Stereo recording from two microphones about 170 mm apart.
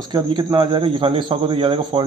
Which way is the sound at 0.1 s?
25° right (ahead or behind).